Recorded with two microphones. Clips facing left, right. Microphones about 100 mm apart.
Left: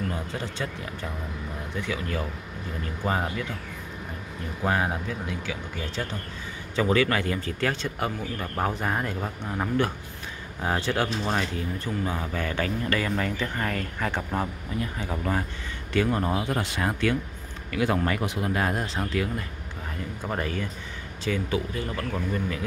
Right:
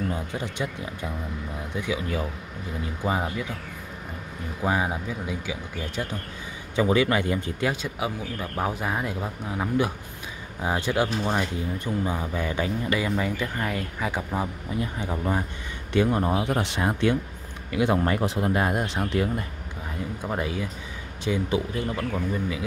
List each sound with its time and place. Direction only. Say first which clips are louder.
0.1 s speech: right 2 dB; 15° right (ahead or behind)
4.6 s speech: even; 10° right (ahead or behind)
14.8 s speech: right 2 dB; 20° right (ahead or behind)
20.2 s speech: even; 10° right (ahead or behind)
22.1 s speech: right 1 dB; 5° right (ahead or behind)